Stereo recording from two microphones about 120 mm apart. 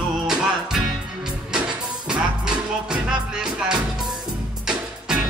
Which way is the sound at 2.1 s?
10° right (ahead or behind).